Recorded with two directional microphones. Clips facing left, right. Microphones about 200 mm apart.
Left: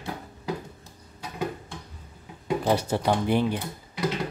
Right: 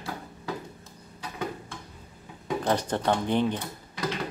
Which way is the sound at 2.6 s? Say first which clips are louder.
Left 2 dB; 10° left (ahead or behind).